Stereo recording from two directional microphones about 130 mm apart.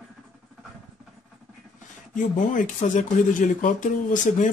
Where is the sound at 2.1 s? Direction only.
75° left (ahead or behind).